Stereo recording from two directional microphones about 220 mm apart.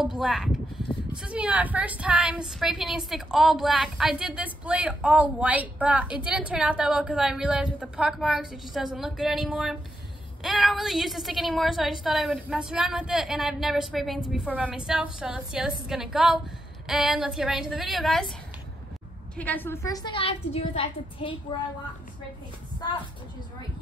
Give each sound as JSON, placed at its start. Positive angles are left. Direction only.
{"t": 0.0, "sound": "a woman's voice", "side_deg": 0}
{"t": 19.3, "sound": "a woman's voice", "side_deg": 5}